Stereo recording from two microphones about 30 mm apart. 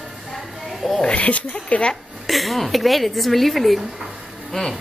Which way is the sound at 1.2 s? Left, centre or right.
Left.